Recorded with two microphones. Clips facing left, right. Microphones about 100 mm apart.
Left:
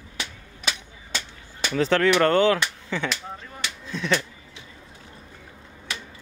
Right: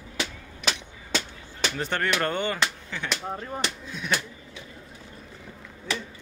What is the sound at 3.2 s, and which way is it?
Speech, 35° right (ahead or behind).